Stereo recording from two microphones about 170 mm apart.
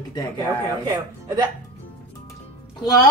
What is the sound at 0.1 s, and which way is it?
Speech, 20° left (ahead or behind).